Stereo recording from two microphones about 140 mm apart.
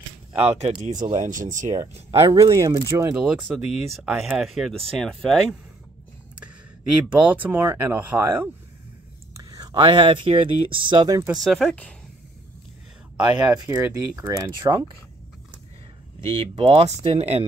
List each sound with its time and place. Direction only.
0.4 s speech: 50° right (ahead or behind)
1.1 s speech: 65° right (ahead or behind)
2.0 s speech: 45° right (ahead or behind)
2.2 s speech: 25° right (ahead or behind)
3.2 s speech: 5° right (ahead or behind)
7.1 s speech: 10° right (ahead or behind); by 11.2 s 30° right (ahead or behind)
11.3 s speech: centre (ahead or behind)
13.5 s speech: 20° right (ahead or behind)
16.3 s speech: 40° right (ahead or behind)